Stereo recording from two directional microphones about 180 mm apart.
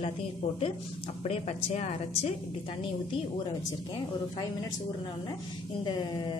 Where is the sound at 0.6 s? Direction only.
30° left (ahead or behind).